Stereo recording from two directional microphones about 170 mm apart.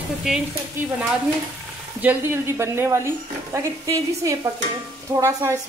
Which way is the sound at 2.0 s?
15° right (ahead or behind).